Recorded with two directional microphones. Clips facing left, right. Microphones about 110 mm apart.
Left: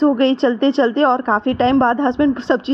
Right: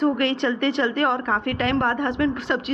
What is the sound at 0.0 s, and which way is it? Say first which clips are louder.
A woman's voice: left 8 dB; 30° left (ahead or behind).